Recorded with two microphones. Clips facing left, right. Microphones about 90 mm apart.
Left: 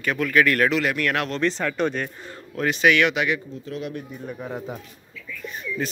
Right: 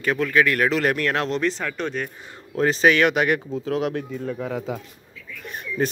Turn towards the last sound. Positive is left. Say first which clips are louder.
# right 3 dB
turn(degrees=-55)  # may be behind; listen again after turning